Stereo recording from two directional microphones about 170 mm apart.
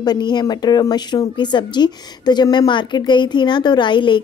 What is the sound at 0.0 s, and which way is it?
Speech, 25° left (ahead or behind).